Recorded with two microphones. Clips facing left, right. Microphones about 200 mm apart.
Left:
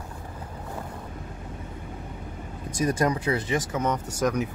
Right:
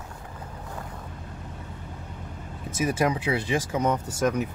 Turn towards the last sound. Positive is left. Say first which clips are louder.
# even
turn(degrees=-5)  # may be behind; listen again after turning